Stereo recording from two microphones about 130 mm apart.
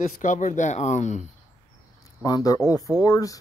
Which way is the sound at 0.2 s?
75° left (ahead or behind).